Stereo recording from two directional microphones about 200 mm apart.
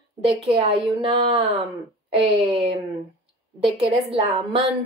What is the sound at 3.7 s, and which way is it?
Speech, 25° right (ahead or behind).